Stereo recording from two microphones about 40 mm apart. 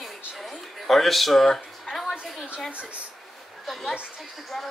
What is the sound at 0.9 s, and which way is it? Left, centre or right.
Speech, centre.